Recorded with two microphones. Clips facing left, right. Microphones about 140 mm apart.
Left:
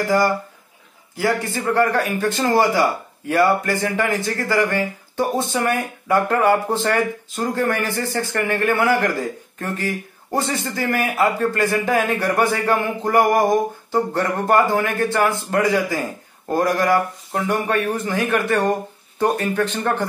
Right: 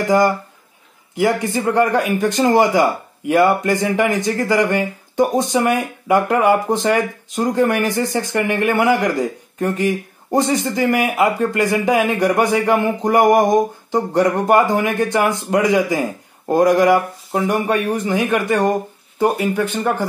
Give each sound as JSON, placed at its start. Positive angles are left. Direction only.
{"t": 1.1, "sound": "speech", "side_deg": -20}